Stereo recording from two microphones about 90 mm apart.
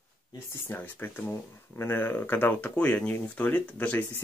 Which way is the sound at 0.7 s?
25° left (ahead or behind).